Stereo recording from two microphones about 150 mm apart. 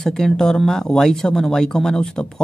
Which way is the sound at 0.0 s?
5° left (ahead or behind).